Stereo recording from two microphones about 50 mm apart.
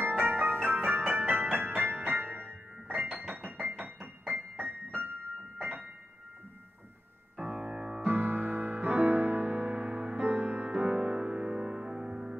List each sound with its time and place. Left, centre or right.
0.1 s music: right
5.6 s a sound: right
7.4 s music: centre
8.0 s music: right
10.7 s music: right